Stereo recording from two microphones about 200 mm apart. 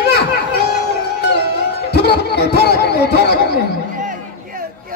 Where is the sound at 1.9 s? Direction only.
55° left (ahead or behind).